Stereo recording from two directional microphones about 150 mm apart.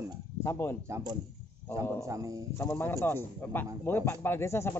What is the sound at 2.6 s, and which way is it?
Speech, 15° left (ahead or behind).